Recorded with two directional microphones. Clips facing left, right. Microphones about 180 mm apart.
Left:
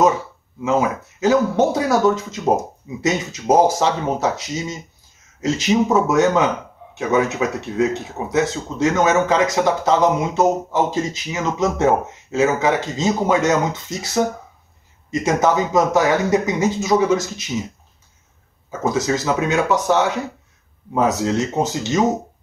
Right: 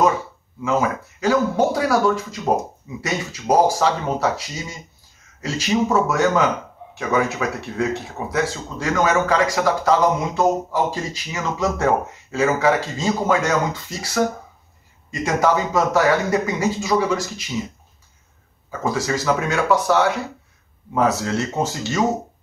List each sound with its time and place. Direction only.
0.6 s speech: 20° left (ahead or behind)
18.7 s speech: 20° left (ahead or behind)